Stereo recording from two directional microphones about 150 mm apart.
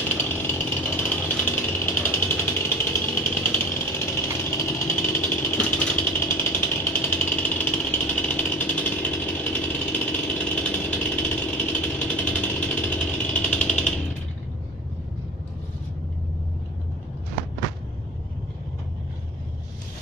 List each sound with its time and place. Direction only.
0.2 s jackhammer: 15° left (ahead or behind)